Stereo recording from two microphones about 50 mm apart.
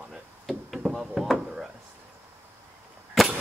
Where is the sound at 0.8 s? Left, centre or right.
Centre.